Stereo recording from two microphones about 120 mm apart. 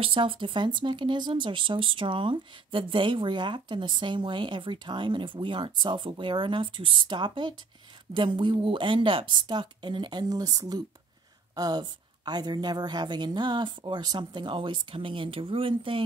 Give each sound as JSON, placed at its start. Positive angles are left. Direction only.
{"t": 0.0, "sound": "speech", "side_deg": -45}